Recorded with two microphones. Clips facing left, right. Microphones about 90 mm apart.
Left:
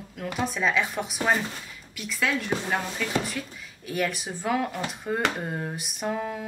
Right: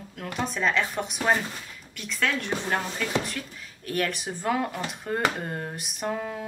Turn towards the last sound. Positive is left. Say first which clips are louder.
# left 1 dB
turn(degrees=0)  # may be behind; listen again after turning